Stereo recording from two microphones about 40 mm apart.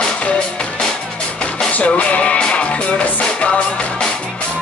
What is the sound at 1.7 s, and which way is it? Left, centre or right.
Music, left.